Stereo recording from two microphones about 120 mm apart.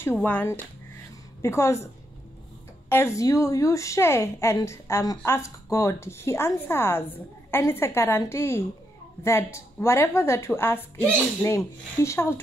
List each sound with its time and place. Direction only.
0.2 s speech: 15° left (ahead or behind)
2.9 s speech: 20° left (ahead or behind)